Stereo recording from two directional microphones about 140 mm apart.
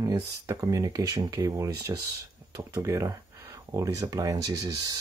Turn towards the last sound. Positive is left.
turn(degrees=-25)  # may be behind; listen again after turning